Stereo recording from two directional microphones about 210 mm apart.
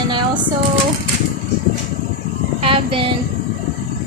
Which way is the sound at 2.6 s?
25° right (ahead or behind).